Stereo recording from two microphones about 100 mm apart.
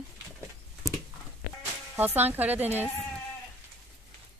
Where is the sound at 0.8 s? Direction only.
35° right (ahead or behind).